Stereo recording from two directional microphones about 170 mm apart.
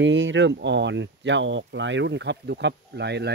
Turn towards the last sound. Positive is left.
turn(degrees=-80)